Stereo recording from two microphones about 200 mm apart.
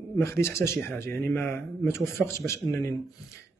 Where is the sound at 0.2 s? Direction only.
15° left (ahead or behind).